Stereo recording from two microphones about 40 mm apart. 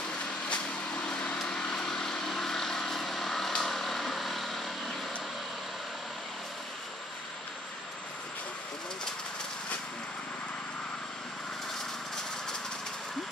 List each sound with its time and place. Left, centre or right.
0.5 s vehicle: left
1.8 s vehicle: centre